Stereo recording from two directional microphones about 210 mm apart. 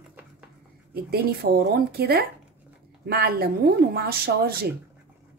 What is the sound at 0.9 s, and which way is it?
Speech, 50° right (ahead or behind).